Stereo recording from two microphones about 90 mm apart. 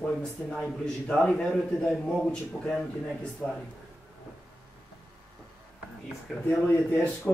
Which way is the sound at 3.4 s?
5° right (ahead or behind).